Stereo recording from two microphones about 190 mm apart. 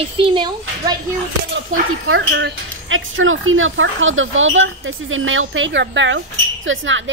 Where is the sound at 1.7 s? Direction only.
80° right.